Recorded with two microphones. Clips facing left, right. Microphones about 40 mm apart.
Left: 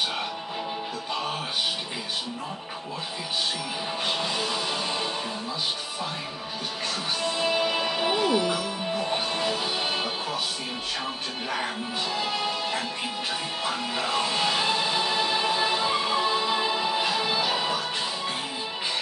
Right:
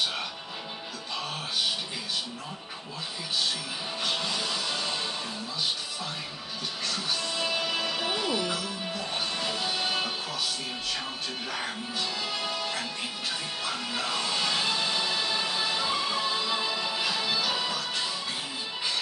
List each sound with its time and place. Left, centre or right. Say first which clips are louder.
4.0 s music: left 2 dB; centre
7.2 s music: left 8 dB; centre
12.2 s music: left 4 dB; centre